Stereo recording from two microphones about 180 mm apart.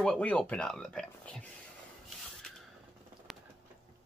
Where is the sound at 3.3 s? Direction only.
Centre (ahead or behind).